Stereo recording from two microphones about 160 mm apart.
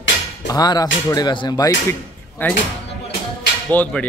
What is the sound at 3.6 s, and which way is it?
Speech, 10° left (ahead or behind).